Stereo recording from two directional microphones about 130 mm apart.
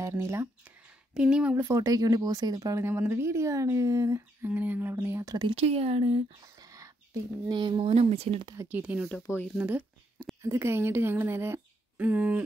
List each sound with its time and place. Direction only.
0.0 s speech: 25° right (ahead or behind)
1.1 s speech: 5° right (ahead or behind)
1.7 s speech: 25° right (ahead or behind)
5.4 s speech: 50° right (ahead or behind)
6.4 s whispering: 25° right (ahead or behind)
7.4 s speech: 35° right (ahead or behind)
8.5 s speech: 15° right (ahead or behind)
10.4 s speech: 20° right (ahead or behind)